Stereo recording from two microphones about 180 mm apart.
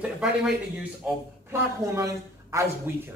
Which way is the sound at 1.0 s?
15° right (ahead or behind).